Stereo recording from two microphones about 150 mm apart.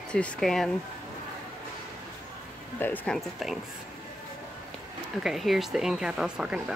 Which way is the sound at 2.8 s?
10° left (ahead or behind).